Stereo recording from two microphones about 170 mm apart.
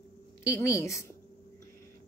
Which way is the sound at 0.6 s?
15° left (ahead or behind).